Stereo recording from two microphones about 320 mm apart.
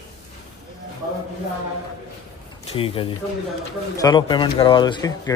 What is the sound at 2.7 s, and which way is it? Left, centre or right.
A man's voice, centre.